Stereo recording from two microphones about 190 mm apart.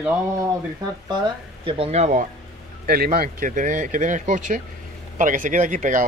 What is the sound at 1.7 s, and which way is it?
Speech, 35° right (ahead or behind).